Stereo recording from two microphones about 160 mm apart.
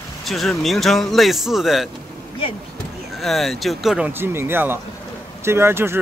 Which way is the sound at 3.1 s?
Centre (ahead or behind).